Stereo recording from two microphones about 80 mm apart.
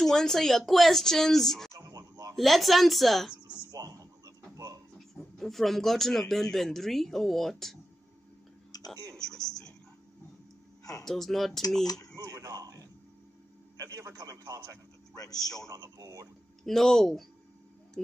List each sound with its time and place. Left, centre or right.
0.0 s speech: centre
1.8 s a sound: right
2.3 s speech: centre
3.7 s a sound: right
4.9 s speech: centre
8.7 s a sound: left
9.1 s music: centre
11.1 s speech: centre
11.8 s a man's voice: left
12.2 s a sound: right
14.1 s a man's voice: right
15.1 s a man's voice: left
15.7 s a man's voice: right
16.6 s speech: centre